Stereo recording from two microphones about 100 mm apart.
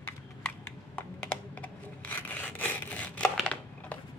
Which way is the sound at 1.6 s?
15° left (ahead or behind).